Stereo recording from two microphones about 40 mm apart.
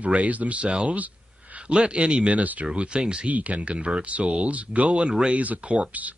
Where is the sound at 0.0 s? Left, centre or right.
Right.